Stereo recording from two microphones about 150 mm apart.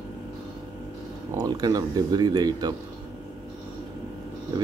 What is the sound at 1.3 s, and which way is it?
Speech, 25° right (ahead or behind).